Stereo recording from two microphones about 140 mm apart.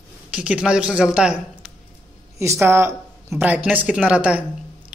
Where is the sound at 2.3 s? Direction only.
20° right (ahead or behind).